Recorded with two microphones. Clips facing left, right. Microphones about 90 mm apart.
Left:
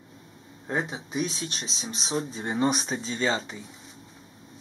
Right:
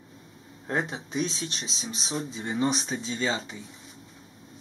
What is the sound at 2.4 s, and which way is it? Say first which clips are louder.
Speech: left 1 dB; 45° left (ahead or behind).